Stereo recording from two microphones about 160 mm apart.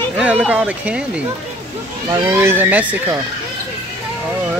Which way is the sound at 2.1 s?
15° right (ahead or behind).